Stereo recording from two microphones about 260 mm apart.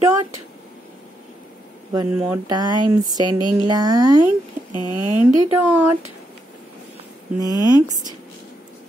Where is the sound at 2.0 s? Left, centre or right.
Centre.